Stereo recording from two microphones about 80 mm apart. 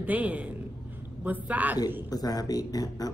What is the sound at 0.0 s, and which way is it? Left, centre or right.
A woman's voice, centre.